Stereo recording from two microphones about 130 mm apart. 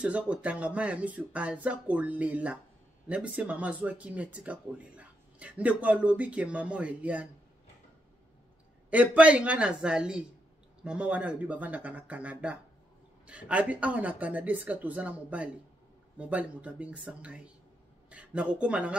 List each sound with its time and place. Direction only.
0.0 s speech: 10° right (ahead or behind)
8.9 s speech: 10° right (ahead or behind)